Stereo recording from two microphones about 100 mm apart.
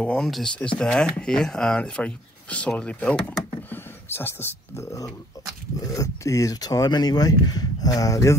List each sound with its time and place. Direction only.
0.0 s speech: 5° left (ahead or behind)
3.7 s speech: 20° left (ahead or behind)